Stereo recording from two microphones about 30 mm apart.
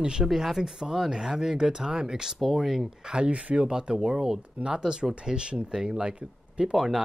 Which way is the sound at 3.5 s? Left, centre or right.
Right.